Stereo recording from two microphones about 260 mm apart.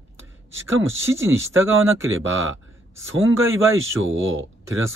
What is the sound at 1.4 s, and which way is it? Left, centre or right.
Speech, right.